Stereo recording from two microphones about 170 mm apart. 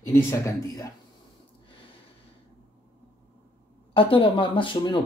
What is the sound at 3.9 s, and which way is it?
Speech, 30° left (ahead or behind).